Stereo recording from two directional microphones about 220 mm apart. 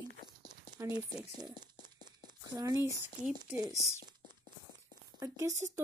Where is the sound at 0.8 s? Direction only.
10° right (ahead or behind).